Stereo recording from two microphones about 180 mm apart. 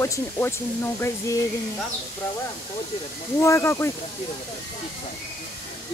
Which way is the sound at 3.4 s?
15° left (ahead or behind).